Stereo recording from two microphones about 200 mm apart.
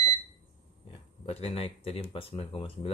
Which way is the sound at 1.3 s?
30° left (ahead or behind).